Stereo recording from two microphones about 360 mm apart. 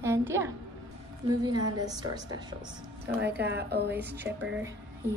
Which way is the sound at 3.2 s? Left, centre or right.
Right.